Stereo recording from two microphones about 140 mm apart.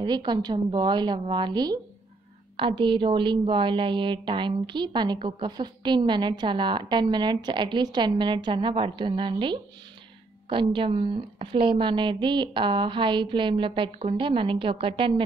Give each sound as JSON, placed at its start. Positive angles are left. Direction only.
{"t": 0.0, "sound": "a woman's voice", "side_deg": -30}